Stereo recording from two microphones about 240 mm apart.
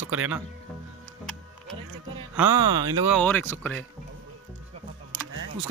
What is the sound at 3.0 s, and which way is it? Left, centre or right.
Speech, centre.